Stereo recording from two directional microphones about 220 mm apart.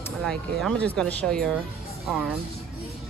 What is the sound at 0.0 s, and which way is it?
Speech, centre (ahead or behind).